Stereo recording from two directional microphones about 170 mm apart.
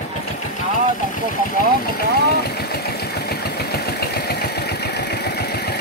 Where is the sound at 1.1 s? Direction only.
55° left (ahead or behind).